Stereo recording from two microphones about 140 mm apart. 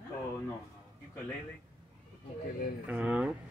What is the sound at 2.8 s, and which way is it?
Speech, 10° right (ahead or behind).